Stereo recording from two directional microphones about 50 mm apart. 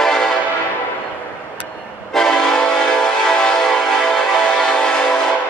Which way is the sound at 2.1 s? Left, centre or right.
Centre.